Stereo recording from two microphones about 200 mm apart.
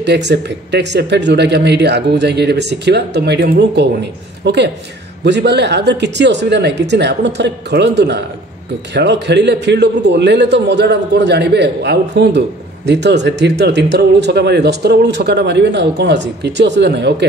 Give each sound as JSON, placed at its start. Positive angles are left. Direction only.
{"t": 0.0, "sound": "a man's voice", "side_deg": -60}